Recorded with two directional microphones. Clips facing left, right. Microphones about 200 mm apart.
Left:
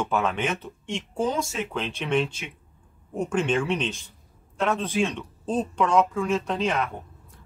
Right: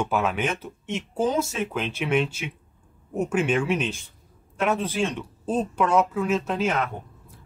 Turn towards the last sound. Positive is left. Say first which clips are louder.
# right 1 dB
turn(degrees=-5)  # may be behind; listen again after turning